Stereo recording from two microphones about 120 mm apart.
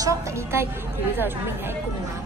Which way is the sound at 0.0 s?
25° right (ahead or behind).